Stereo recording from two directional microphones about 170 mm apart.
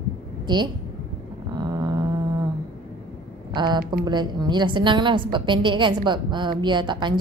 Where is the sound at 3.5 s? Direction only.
25° right (ahead or behind).